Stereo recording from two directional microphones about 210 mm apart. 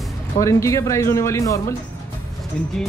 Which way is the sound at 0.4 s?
15° left (ahead or behind).